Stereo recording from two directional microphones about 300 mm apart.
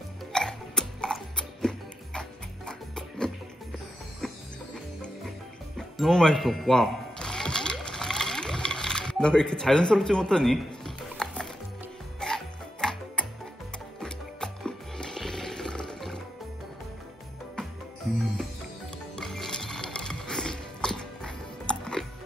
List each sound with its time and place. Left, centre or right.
0.3 s music: centre
5.8 s music: centre
19.1 s music: centre